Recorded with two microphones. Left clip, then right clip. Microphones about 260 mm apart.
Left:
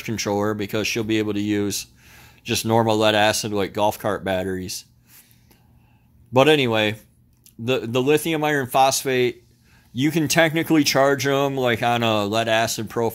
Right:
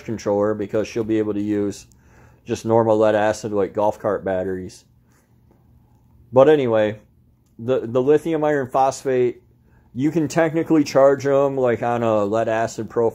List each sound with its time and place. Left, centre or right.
0.0 s speech: left
6.3 s speech: left
12.8 s speech: left